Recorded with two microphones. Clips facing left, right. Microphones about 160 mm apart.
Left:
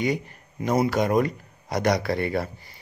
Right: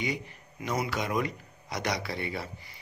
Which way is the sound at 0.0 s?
45° left (ahead or behind).